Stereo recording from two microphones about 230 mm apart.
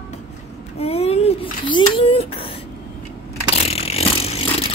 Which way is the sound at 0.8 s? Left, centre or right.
Left.